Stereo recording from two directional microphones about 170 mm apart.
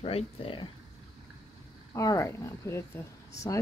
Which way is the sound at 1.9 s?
20° left (ahead or behind).